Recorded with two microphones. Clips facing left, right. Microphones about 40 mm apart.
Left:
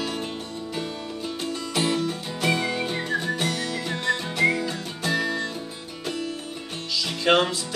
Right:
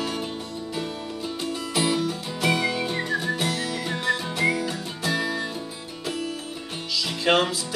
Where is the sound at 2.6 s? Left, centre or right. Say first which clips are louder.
Right 1 dB; centre.